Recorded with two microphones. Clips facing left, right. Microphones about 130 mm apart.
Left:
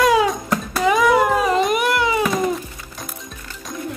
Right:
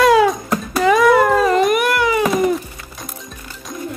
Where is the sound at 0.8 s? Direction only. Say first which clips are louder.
Right 4 dB; centre (ahead or behind).